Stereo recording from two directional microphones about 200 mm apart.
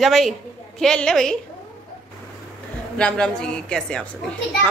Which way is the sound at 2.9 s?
5° left (ahead or behind).